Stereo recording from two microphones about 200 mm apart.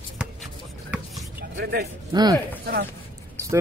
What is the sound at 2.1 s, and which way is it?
Speech, 20° right (ahead or behind).